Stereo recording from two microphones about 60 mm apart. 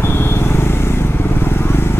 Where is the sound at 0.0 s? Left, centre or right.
Left.